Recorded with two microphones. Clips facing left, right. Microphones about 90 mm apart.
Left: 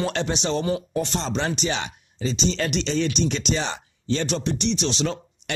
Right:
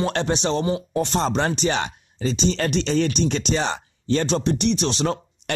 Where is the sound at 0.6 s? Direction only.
25° right (ahead or behind).